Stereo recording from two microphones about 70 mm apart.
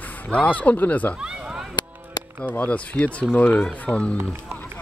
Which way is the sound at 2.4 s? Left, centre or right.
Left.